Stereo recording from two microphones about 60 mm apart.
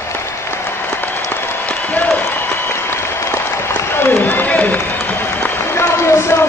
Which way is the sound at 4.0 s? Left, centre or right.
Left.